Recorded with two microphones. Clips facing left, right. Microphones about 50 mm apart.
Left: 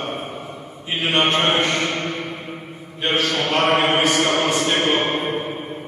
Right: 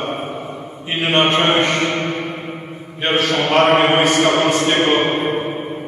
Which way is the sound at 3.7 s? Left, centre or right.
Centre.